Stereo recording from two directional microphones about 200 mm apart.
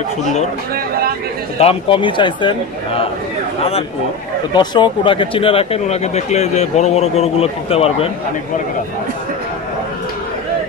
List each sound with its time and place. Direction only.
1.6 s speech: 25° left (ahead or behind)
4.6 s speech: 25° left (ahead or behind)